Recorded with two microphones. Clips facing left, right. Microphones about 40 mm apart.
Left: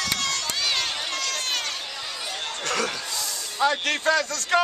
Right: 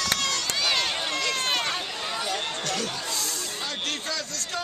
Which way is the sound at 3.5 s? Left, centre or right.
Left.